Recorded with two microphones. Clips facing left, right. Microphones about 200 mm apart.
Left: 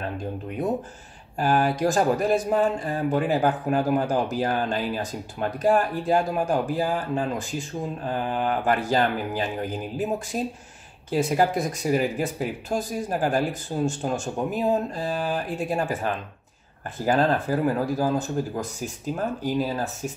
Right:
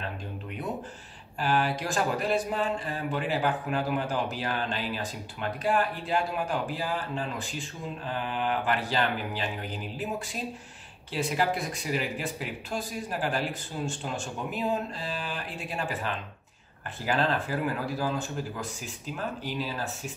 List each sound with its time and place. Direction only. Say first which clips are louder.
1.4 s speech: left 6 dB; 45° left (ahead or behind)